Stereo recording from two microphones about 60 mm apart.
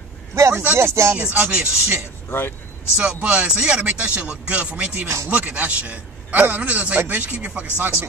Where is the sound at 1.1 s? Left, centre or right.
Right.